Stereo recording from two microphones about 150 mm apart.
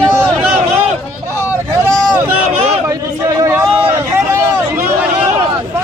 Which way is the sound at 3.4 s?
15° right (ahead or behind).